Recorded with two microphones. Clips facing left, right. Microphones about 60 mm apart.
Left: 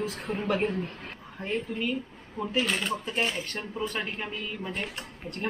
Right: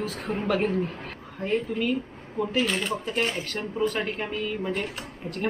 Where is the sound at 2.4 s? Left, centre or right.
Centre.